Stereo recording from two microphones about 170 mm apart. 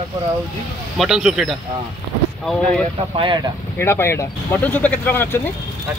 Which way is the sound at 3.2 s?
30° right (ahead or behind).